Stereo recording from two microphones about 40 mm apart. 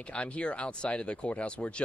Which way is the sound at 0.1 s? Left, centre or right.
Left.